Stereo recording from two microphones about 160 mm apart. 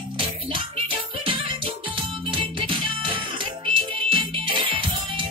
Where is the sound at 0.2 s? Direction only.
35° right (ahead or behind).